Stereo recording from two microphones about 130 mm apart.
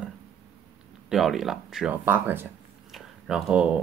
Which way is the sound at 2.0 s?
15° right (ahead or behind).